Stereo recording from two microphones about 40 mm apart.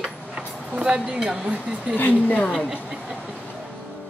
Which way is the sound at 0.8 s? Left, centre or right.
Right.